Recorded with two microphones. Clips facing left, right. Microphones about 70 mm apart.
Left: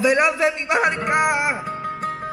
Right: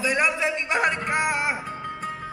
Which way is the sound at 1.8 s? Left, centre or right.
Left.